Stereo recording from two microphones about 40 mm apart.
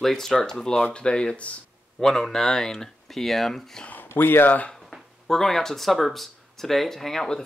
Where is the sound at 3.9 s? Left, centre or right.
Left.